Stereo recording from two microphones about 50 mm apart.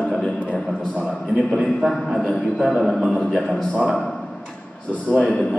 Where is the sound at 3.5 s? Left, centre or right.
Centre.